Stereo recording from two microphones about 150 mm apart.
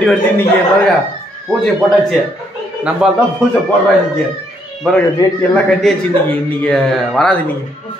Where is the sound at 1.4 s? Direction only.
5° left (ahead or behind).